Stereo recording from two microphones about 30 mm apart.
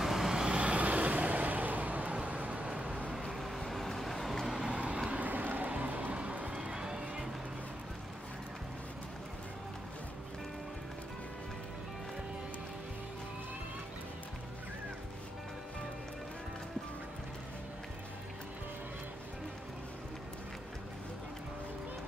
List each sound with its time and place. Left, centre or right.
0.0 s vehicle: centre
0.4 s vehicle: right
0.7 s vehicle: right
2.2 s vehicle: right
3.3 s vehicle: centre
4.6 s vehicle: right
5.2 s vehicle: right
6.1 s run: right
6.5 s run: right